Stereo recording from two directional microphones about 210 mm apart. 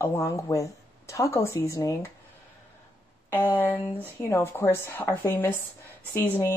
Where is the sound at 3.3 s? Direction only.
10° left (ahead or behind).